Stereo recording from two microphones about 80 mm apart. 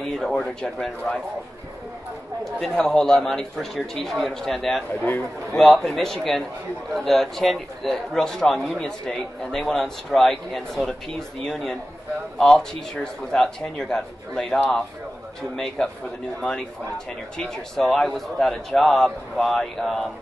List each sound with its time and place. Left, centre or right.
0.2 s a man's voice: centre
2.4 s speech: centre
5.0 s a man's voice: left
5.6 s a man's voice: centre
17.4 s speech: centre